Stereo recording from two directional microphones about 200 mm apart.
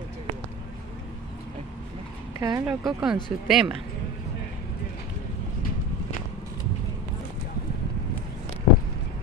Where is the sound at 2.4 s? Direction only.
15° right (ahead or behind).